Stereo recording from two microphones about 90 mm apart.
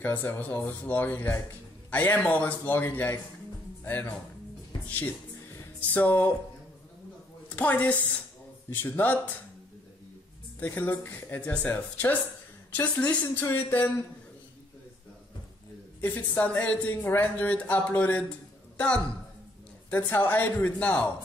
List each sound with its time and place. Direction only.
0.0 s a woman's voice: 20° left (ahead or behind)
7.4 s a woman's voice: 15° left (ahead or behind)
10.6 s speech: 20° left (ahead or behind)
16.0 s a woman's voice: 20° left (ahead or behind)
19.9 s speech: 20° left (ahead or behind)